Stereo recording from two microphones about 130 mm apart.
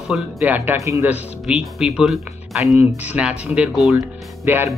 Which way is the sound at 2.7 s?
15° right (ahead or behind).